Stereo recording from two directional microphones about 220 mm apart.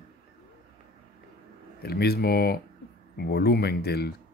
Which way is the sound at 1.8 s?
45° left (ahead or behind).